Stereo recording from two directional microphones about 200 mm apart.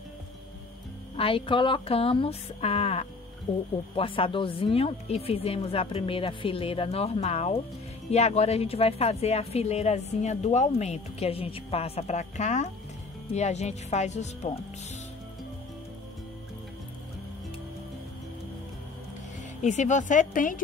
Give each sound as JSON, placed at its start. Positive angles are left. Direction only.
{"t": 1.1, "sound": "a woman's voice", "side_deg": 25}
{"t": 19.6, "sound": "a woman's voice", "side_deg": 35}